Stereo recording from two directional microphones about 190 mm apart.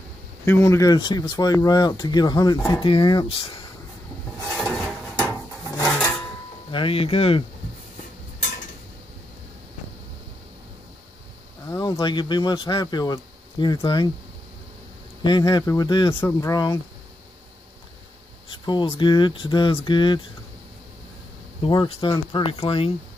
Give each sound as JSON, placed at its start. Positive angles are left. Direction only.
{"t": 0.5, "sound": "speech", "side_deg": 15}
{"t": 4.6, "sound": "a sound", "side_deg": 5}
{"t": 5.1, "sound": "a sound", "side_deg": 15}
{"t": 6.7, "sound": "speech", "side_deg": 30}
{"t": 11.7, "sound": "speech", "side_deg": 20}
{"t": 15.2, "sound": "speech", "side_deg": 25}
{"t": 18.5, "sound": "speech", "side_deg": 25}
{"t": 21.6, "sound": "speech", "side_deg": 25}